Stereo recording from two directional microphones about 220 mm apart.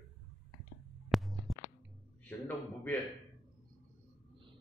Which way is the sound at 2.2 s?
5° left (ahead or behind).